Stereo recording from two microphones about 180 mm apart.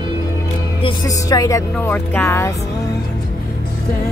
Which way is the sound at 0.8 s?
20° left (ahead or behind).